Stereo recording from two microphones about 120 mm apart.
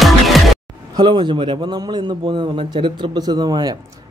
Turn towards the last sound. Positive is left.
turn(degrees=-35)  # may be behind; listen again after turning